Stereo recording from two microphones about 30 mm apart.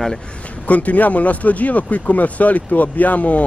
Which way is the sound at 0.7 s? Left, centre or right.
Left.